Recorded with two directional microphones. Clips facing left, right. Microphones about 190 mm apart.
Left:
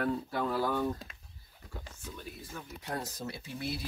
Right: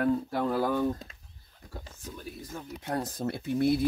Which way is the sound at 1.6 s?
40° right (ahead or behind).